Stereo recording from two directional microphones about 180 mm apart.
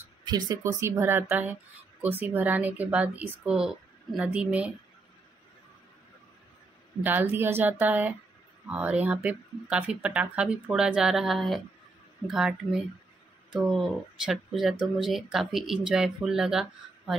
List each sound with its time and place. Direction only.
0.2 s speech: 20° right (ahead or behind); by 4.7 s 5° right (ahead or behind)
7.0 s speech: 10° right (ahead or behind)